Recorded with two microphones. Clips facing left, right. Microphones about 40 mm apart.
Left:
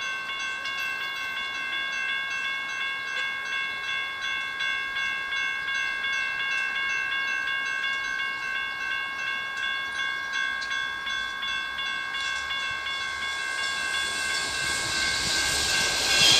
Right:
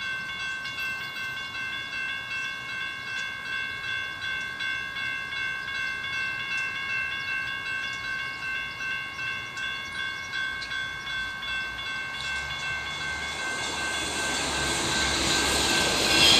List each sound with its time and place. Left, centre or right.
15.0 s vehicle: right
16.1 s vehicle: centre